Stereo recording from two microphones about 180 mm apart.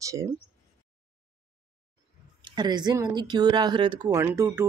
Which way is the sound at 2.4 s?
25° right (ahead or behind).